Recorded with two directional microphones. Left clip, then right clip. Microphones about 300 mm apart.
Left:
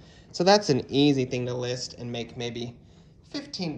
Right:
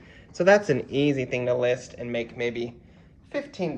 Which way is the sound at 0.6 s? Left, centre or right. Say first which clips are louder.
Left 1 dB; centre.